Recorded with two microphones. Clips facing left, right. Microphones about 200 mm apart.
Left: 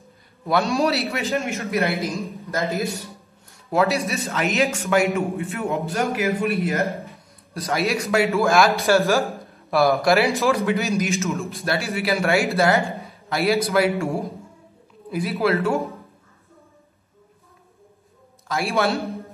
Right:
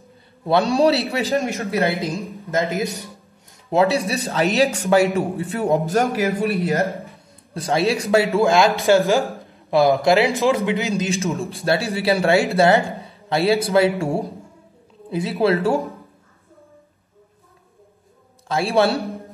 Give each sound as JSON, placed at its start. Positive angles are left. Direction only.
{"t": 0.5, "sound": "a man's voice", "side_deg": -30}
{"t": 2.5, "sound": "a man's voice", "side_deg": -15}
{"t": 3.7, "sound": "a man's voice", "side_deg": -30}
{"t": 8.4, "sound": "a man's voice", "side_deg": -20}
{"t": 11.0, "sound": "a man's voice", "side_deg": -30}
{"t": 15.0, "sound": "a man's voice", "side_deg": -30}
{"t": 18.5, "sound": "a man's voice", "side_deg": -30}